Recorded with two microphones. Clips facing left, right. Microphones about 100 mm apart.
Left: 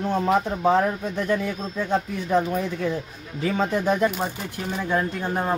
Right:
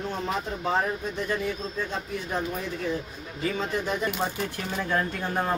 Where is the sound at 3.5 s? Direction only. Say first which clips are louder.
Left 8 dB; 70° left (ahead or behind).